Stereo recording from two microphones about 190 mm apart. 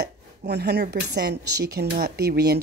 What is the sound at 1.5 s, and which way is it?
Speech, 20° right (ahead or behind).